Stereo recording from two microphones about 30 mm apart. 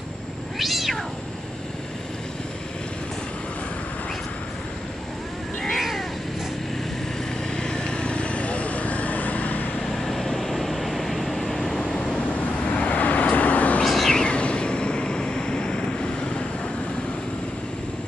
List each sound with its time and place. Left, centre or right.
0.6 s cat: centre
5.8 s cat: centre
7.5 s vehicle: left
9.8 s vehicle: centre
11.8 s vehicle: left
12.9 s vehicle: left
13.8 s a sound: centre
14.1 s vehicle: left